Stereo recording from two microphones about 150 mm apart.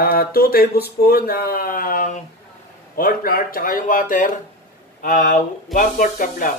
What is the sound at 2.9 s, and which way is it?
Speech, 75° left (ahead or behind).